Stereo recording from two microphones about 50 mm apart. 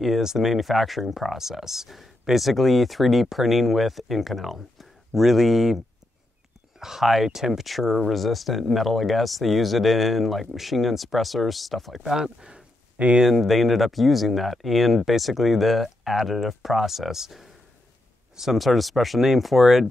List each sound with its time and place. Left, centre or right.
0.0 s speech: centre
6.8 s speech: centre
12.0 s speech: centre
13.2 s speech: centre